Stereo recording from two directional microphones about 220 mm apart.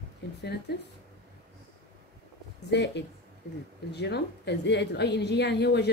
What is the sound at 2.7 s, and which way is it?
A woman's voice, 50° left (ahead or behind).